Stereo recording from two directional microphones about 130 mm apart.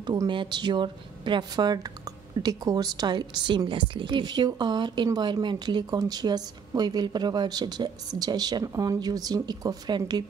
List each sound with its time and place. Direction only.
0.0 s a woman's voice: 35° right (ahead or behind)